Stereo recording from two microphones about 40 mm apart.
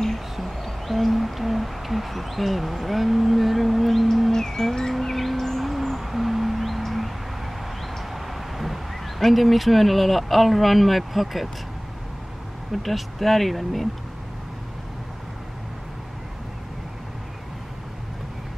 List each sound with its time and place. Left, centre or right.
0.0 s speech: centre
4.3 s music: centre
5.0 s a sound: centre
12.7 s speech: centre